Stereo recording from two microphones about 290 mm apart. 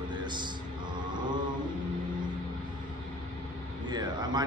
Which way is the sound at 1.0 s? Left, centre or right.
Centre.